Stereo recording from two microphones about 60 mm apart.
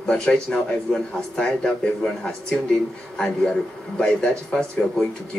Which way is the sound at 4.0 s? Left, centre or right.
Centre.